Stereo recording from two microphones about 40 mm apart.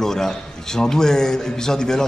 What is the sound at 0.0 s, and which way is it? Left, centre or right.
Speech, centre.